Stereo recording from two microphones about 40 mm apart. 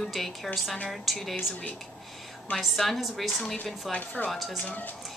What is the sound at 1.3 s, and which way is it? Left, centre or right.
Speech, left.